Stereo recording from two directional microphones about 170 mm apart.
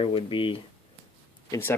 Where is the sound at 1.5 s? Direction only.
15° left (ahead or behind).